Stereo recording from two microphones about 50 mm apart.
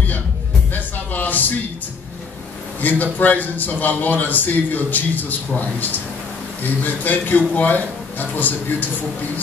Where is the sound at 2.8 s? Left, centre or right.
Left.